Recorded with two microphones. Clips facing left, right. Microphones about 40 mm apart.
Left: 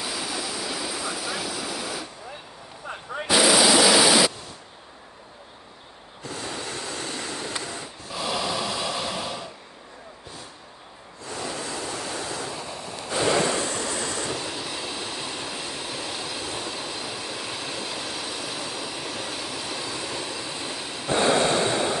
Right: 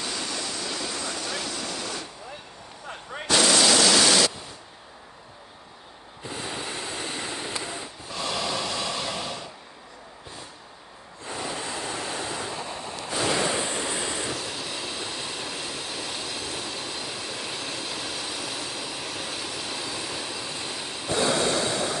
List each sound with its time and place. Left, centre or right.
0.0 s vehicle: centre
2.9 s a sound: centre
6.2 s a sound: centre
7.6 s rub: centre
8.1 s snort: centre
11.2 s waves: right
12.5 s waves: right
13.1 s waves: centre
13.5 s waves: centre
14.2 s train: centre
21.1 s a sound: left